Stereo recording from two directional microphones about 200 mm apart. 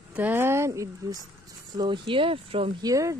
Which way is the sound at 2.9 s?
15° right (ahead or behind).